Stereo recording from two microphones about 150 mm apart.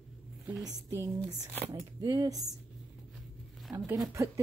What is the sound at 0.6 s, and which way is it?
A woman's voice, 20° right (ahead or behind).